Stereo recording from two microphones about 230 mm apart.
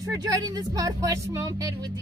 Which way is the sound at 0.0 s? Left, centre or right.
Centre.